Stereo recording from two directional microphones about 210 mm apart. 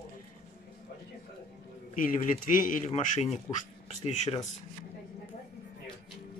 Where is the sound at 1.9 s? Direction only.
40° left (ahead or behind).